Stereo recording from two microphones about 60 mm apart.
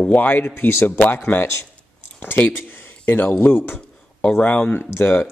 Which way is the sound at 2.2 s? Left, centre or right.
Left.